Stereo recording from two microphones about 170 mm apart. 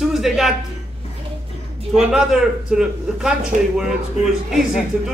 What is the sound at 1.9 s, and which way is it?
A man's voice, 5° right (ahead or behind).